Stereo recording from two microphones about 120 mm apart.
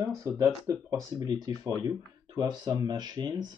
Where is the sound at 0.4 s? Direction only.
25° right (ahead or behind).